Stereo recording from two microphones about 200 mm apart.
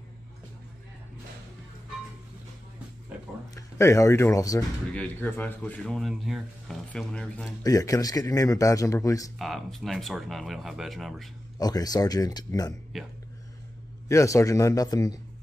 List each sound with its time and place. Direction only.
3.5 s a man's voice: 15° left (ahead or behind)
7.6 s a man's voice: 15° left (ahead or behind)
9.4 s speech: centre (ahead or behind)
11.6 s speech: 20° left (ahead or behind)
12.9 s speech: centre (ahead or behind)
14.0 s a man's voice: 15° left (ahead or behind)